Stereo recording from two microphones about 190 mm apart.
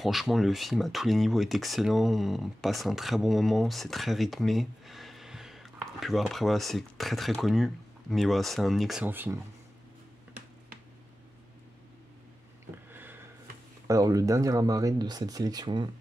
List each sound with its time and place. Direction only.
0.0 s speech: centre (ahead or behind)
12.9 s a sound: 10° right (ahead or behind)
13.8 s speech: 20° right (ahead or behind)